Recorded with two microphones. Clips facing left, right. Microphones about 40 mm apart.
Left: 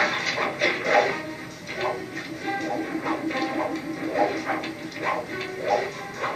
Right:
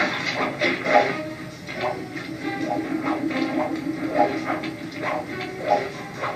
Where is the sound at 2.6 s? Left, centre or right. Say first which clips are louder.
Right 6 dB; centre.